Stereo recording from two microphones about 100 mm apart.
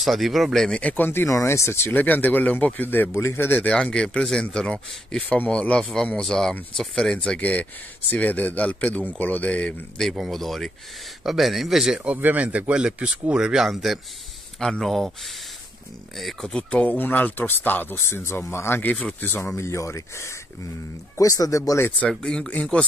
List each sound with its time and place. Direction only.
0.0 s speech: centre (ahead or behind)
10.0 s speech: centre (ahead or behind); by 21.9 s 30° left (ahead or behind)
22.1 s speech: 5° left (ahead or behind)